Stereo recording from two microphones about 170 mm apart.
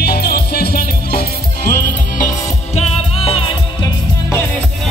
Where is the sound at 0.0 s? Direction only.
65° left (ahead or behind).